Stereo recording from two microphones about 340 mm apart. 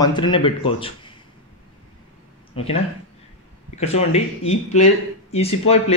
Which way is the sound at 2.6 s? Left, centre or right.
Centre.